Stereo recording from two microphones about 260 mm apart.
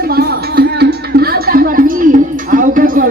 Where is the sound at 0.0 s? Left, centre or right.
Right.